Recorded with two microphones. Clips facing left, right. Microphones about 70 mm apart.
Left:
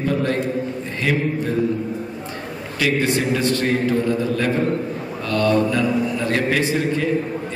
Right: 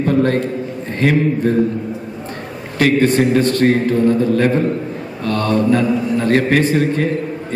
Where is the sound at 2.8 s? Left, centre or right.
Right.